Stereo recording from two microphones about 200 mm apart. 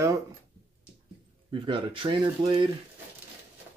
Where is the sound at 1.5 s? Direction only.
25° right (ahead or behind).